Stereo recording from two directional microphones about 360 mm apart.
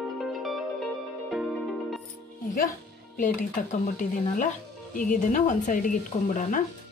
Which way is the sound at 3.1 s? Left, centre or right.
Left.